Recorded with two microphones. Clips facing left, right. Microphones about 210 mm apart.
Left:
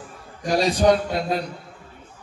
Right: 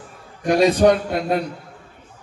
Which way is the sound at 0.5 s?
55° right (ahead or behind).